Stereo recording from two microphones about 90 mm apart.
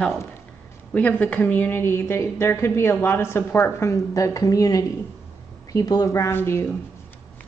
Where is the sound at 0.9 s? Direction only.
15° left (ahead or behind).